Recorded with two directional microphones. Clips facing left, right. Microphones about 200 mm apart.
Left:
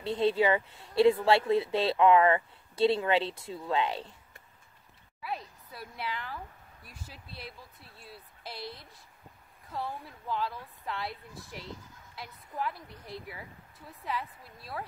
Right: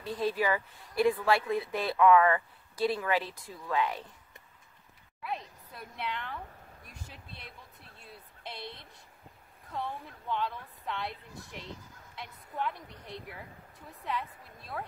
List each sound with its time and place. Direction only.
0.0 s a woman's voice: 25° left (ahead or behind)
5.2 s a woman's voice: 5° left (ahead or behind)
8.0 s a sound: 5° left (ahead or behind)
9.7 s a woman's voice: centre (ahead or behind)